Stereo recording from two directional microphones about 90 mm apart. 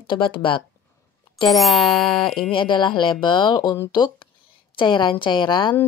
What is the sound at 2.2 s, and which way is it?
Speech, 65° left (ahead or behind).